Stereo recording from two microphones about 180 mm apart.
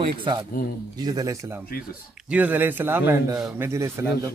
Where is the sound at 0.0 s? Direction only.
25° right (ahead or behind).